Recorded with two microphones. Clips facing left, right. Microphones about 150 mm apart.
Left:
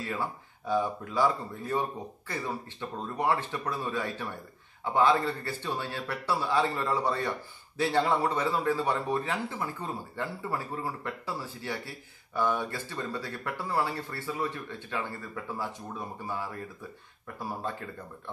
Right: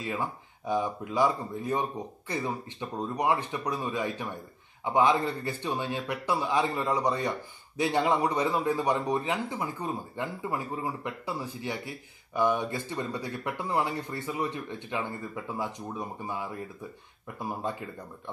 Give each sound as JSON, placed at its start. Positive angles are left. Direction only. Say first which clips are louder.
{"t": 0.0, "sound": "a man's voice", "louder": "right 1 dB", "side_deg": -15}